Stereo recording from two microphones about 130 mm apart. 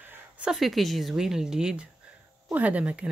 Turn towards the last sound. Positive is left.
turn(degrees=-10)  # may be behind; listen again after turning